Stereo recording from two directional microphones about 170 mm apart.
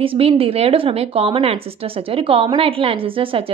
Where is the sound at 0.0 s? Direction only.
30° right (ahead or behind).